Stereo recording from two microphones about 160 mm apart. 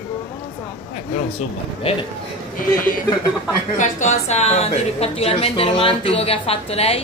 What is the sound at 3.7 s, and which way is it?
A woman's voice, 50° left (ahead or behind).